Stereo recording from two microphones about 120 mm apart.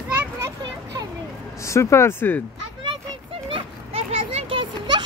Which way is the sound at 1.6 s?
25° left (ahead or behind).